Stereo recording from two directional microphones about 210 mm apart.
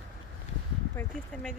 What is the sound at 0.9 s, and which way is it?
Speech, 5° left (ahead or behind).